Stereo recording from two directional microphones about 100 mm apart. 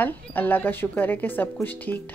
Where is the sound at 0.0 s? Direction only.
15° left (ahead or behind).